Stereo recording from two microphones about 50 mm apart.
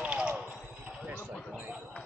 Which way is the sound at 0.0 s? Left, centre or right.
Right.